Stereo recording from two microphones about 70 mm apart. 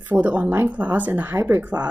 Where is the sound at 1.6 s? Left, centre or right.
Right.